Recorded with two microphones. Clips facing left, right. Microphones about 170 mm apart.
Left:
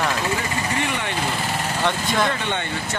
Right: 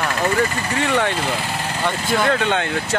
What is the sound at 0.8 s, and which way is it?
Speech, 60° right (ahead or behind).